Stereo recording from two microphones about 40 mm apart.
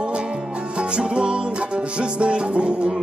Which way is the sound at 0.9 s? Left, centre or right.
Right.